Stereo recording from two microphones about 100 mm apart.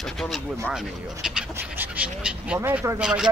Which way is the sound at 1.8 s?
10° right (ahead or behind).